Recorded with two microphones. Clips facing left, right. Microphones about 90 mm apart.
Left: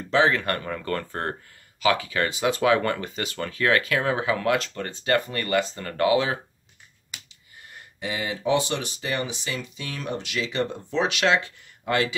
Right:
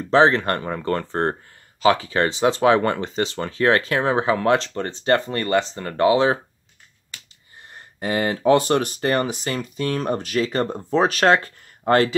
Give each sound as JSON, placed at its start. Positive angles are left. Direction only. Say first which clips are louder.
{"t": 0.0, "sound": "speech", "louder": "right 5 dB", "side_deg": -35}
{"t": 7.7, "sound": "speech", "louder": "right 8 dB", "side_deg": -50}